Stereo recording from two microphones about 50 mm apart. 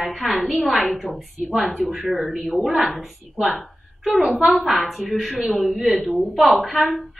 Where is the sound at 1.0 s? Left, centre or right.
Right.